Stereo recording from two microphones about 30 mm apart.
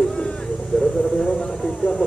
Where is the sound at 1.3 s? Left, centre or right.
Left.